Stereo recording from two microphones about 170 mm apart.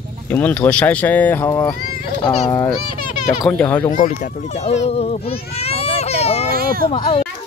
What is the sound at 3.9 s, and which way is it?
A child's voice, 50° left (ahead or behind).